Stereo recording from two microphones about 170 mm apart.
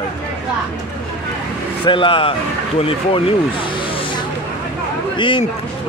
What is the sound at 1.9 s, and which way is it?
Speech, 30° left (ahead or behind).